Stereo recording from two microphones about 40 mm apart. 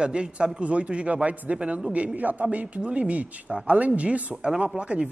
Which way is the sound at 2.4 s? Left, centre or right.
Right.